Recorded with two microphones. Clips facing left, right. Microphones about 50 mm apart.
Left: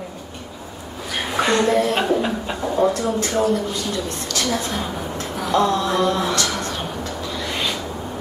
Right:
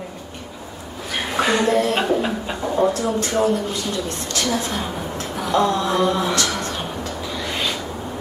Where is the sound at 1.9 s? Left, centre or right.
Centre.